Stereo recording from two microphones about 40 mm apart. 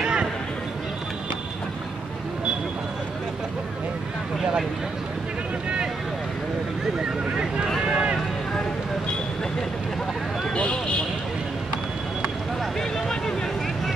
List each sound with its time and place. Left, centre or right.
0.0 s a sound: centre
7.8 s run: right
10.5 s vehicle: left